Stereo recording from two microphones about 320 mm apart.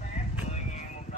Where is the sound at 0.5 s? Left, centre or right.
Left.